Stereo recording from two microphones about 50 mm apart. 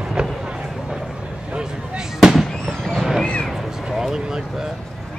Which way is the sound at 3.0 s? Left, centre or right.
Centre.